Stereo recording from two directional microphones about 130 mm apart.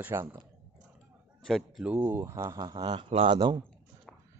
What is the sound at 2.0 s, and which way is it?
Speech, 20° right (ahead or behind).